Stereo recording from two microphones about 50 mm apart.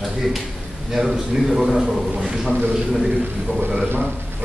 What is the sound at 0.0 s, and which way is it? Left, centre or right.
A man's voice, centre.